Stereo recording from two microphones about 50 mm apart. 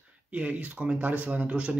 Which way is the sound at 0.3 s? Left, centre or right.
Right.